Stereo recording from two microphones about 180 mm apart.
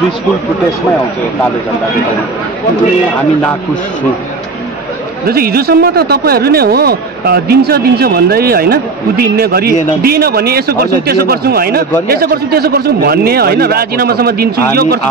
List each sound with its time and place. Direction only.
5.2 s speech: 55° right (ahead or behind)